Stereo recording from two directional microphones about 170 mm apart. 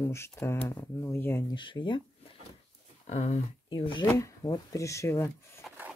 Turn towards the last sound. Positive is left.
turn(degrees=15)  # may be behind; listen again after turning